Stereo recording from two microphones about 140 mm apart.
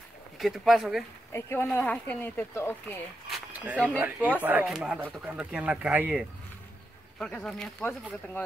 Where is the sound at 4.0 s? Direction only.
10° right (ahead or behind).